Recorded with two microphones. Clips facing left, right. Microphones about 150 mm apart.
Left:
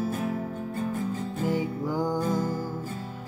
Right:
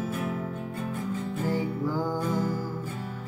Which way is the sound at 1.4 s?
15° left (ahead or behind).